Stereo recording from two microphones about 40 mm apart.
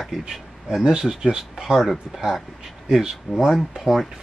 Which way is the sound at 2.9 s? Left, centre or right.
Centre.